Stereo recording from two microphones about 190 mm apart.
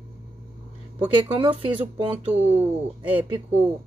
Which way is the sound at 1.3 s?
25° right (ahead or behind).